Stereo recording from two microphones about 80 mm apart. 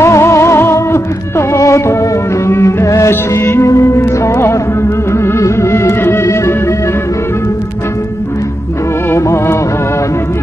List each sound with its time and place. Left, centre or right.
0.0 s music: left
9.1 s music: left